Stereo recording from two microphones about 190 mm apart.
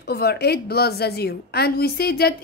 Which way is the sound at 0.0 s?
55° left (ahead or behind).